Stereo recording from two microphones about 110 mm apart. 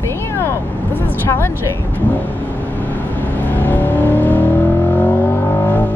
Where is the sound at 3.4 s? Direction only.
15° left (ahead or behind).